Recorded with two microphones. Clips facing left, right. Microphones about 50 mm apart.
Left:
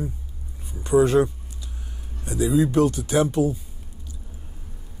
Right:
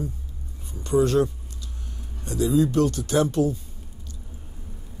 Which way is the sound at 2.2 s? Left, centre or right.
Centre.